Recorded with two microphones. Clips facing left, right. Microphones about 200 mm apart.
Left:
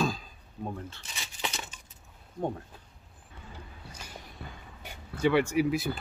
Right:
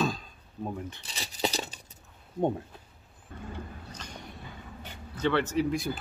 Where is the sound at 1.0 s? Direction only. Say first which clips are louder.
Right 10 dB; 35° right (ahead or behind).